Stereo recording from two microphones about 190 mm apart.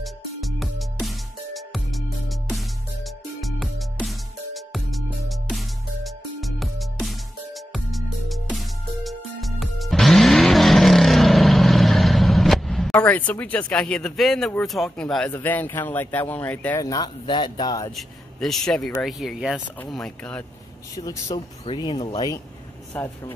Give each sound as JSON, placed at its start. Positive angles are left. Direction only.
{"t": 0.0, "sound": "music", "side_deg": 0}
{"t": 15.3, "sound": "speech", "side_deg": 10}
{"t": 17.9, "sound": "speech", "side_deg": 0}
{"t": 20.9, "sound": "speech", "side_deg": 20}